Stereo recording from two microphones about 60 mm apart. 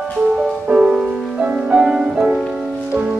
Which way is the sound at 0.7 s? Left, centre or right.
Centre.